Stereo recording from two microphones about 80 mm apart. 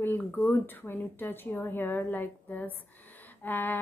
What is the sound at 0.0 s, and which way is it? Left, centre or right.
A woman's voice, left.